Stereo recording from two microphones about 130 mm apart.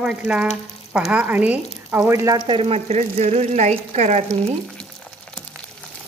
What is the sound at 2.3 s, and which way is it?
Speech, 45° right (ahead or behind).